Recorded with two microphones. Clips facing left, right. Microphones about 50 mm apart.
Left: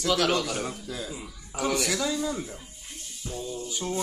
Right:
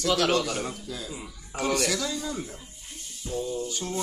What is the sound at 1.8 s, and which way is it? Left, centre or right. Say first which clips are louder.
Speech: left 1 dB; centre.